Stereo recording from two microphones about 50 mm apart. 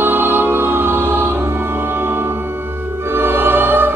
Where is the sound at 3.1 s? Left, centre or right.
Right.